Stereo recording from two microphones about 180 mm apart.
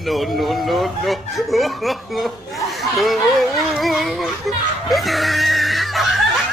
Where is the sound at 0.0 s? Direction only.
Centre (ahead or behind).